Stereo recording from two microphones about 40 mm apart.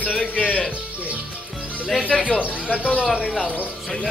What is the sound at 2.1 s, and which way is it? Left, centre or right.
Speech, centre.